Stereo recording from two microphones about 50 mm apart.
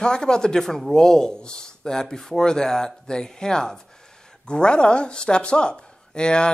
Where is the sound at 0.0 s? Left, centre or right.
Centre.